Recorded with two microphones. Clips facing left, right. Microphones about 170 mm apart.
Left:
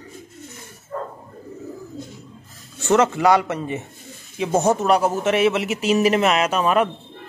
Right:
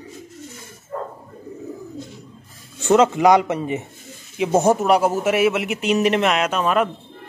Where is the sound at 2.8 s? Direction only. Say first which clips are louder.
Right 2 dB; 15° right (ahead or behind); by 6.8 s 10° left (ahead or behind).